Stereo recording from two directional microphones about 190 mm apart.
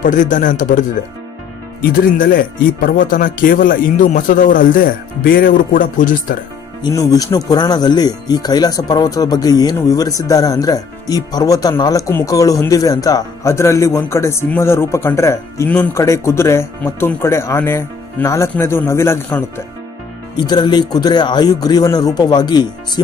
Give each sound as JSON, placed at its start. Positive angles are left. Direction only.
{"t": 0.0, "sound": "speech", "side_deg": 40}
{"t": 6.8, "sound": "speech", "side_deg": 20}
{"t": 20.3, "sound": "speech", "side_deg": 25}